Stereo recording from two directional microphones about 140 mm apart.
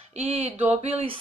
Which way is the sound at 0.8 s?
40° right (ahead or behind).